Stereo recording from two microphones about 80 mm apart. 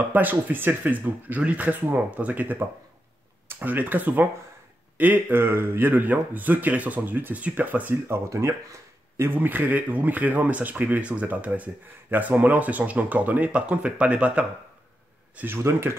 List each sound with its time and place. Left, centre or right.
0.1 s speech: right
8.3 s speech: right; by 14.4 s centre
15.3 s speech: right